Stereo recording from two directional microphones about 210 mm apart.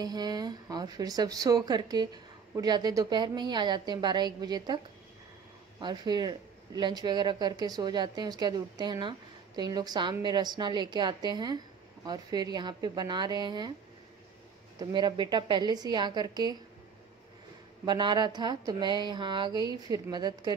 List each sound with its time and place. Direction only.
0.0 s a woman's voice: 20° right (ahead or behind)
5.8 s a woman's voice: 20° right (ahead or behind)
14.8 s a woman's voice: 20° right (ahead or behind)
17.8 s a woman's voice: 20° right (ahead or behind)